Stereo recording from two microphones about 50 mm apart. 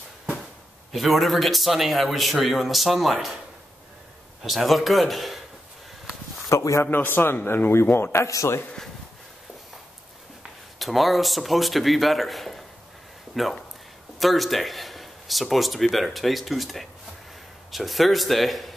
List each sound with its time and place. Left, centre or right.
0.9 s a man's voice: centre
4.4 s a man's voice: centre
6.5 s a man's voice: left
6.9 s a man's voice: left
10.8 s a man's voice: centre